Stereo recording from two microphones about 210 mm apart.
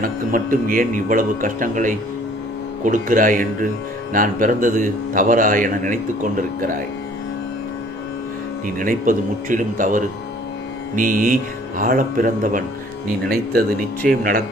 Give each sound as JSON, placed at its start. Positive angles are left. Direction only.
{"t": 0.0, "sound": "a man's voice", "side_deg": -40}
{"t": 8.6, "sound": "a man's voice", "side_deg": -40}